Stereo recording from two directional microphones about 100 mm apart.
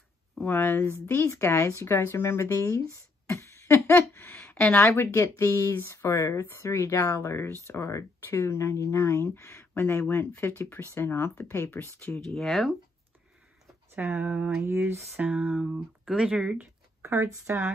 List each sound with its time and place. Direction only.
0.4 s speech: 20° left (ahead or behind)
2.9 s a sound: 30° left (ahead or behind)
4.7 s speech: 30° left (ahead or behind)
12.4 s speech: 5° left (ahead or behind)
13.9 s speech: 20° right (ahead or behind)
14.6 s a sound: 25° right (ahead or behind)
15.1 s speech: 15° right (ahead or behind)
16.5 s speech: 25° right (ahead or behind)